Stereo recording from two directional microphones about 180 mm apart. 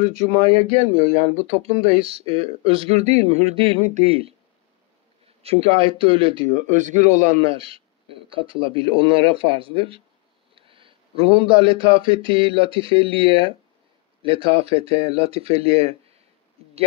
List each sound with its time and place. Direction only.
0.0 s speech: 40° right (ahead or behind)
5.4 s speech: 35° right (ahead or behind)
6.5 s a man's voice: 40° right (ahead or behind)
7.4 s a man's voice: 30° right (ahead or behind)